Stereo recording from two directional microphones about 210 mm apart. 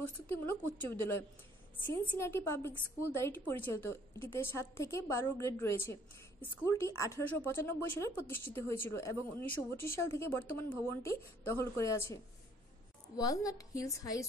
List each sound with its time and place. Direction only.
0.5 s speech: 10° left (ahead or behind)